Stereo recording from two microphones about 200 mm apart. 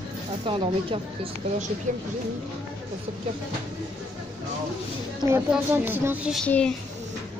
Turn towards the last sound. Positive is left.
turn(degrees=5)  # may be behind; listen again after turning